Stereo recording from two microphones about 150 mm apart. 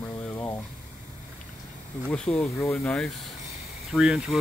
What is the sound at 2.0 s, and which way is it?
Speech, 5° left (ahead or behind).